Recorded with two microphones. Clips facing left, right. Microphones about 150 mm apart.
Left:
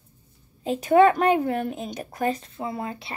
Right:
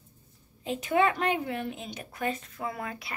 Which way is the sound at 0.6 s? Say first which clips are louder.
Left 8 dB; 40° left (ahead or behind).